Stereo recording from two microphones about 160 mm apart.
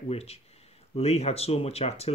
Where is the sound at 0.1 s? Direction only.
40° left (ahead or behind).